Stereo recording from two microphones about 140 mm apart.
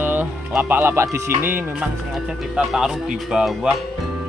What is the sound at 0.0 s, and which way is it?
Speech, 15° right (ahead or behind).